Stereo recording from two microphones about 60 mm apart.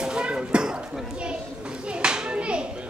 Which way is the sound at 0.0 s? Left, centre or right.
Centre.